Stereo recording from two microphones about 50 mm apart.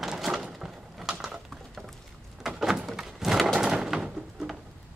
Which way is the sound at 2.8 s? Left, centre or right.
Centre.